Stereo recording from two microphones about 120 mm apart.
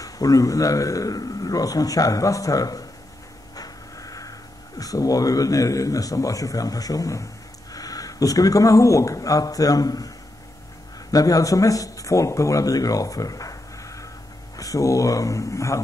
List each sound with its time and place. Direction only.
0.0 s a man's voice: 30° left (ahead or behind)
3.5 s a sound: 30° left (ahead or behind)
4.7 s a man's voice: 30° left (ahead or behind)